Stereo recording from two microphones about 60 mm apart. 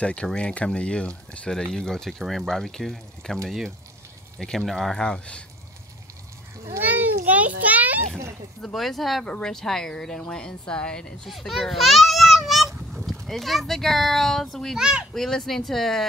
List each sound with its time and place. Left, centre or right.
0.0 s speech: centre
6.8 s children playing: right
8.6 s speech: centre
11.2 s a sound: centre
13.1 s speech: centre
14.8 s a child's voice: centre
15.1 s speech: centre